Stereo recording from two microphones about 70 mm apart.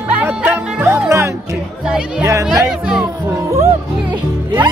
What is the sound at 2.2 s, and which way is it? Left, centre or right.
Music, right.